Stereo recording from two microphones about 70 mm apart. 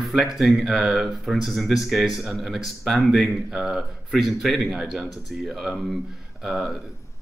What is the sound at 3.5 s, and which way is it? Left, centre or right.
Speech, centre.